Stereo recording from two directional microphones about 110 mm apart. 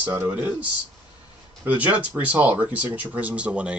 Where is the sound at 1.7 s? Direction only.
15° right (ahead or behind).